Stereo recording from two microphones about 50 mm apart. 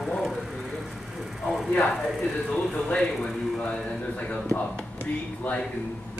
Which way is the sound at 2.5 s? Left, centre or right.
Centre.